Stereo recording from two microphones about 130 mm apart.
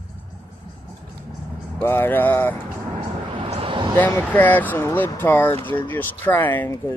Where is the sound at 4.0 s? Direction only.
15° left (ahead or behind).